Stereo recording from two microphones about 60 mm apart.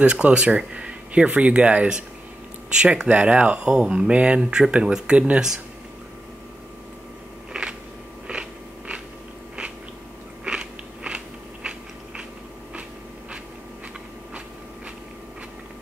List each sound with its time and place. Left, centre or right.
0.0 s speech: centre
7.5 s a sound: centre
8.3 s biting: centre
10.4 s biting: centre